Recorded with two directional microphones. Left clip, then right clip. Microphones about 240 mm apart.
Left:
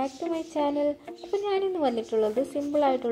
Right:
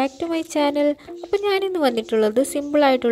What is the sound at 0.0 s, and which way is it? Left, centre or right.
Speech, right.